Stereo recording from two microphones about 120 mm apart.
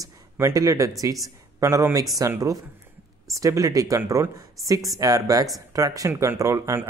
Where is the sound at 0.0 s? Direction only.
30° right (ahead or behind).